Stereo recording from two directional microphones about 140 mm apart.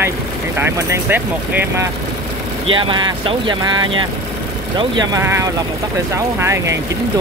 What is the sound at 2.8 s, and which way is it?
Speech, 35° right (ahead or behind).